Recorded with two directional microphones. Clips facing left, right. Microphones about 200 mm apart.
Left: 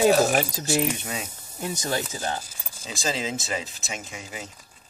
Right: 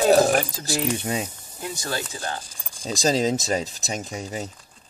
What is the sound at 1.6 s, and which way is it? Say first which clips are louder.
Speech: left 2 dB; 20° left (ahead or behind).